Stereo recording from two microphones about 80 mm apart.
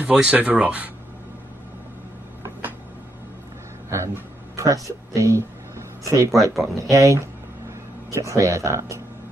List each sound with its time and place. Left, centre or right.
0.0 s speech: centre
3.9 s a sound: right
5.1 s speech: right
6.3 s speech: centre
6.8 s speech: right